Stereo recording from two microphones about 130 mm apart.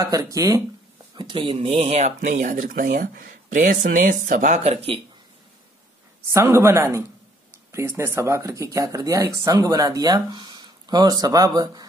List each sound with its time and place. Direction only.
0.0 s speech: 25° right (ahead or behind)
1.1 s speech: 40° right (ahead or behind); by 4.6 s 90° right
4.6 s speech: 45° right (ahead or behind)
6.3 s speech: 20° right (ahead or behind)